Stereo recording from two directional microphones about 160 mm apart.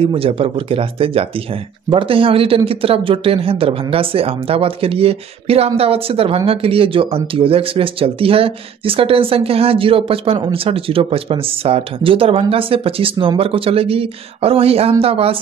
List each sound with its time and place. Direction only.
0.0 s speech: 35° right (ahead or behind)